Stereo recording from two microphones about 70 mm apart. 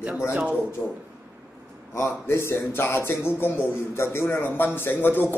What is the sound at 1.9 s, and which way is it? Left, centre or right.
A man's voice, left.